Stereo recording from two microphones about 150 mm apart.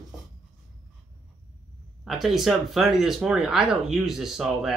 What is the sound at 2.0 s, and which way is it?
Speech, centre (ahead or behind).